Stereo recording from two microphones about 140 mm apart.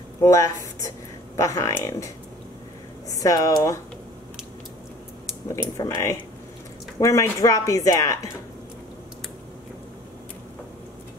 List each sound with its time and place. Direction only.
0.2 s speech: 25° left (ahead or behind)
3.1 s speech: 25° left (ahead or behind)
5.5 s speech: 25° left (ahead or behind)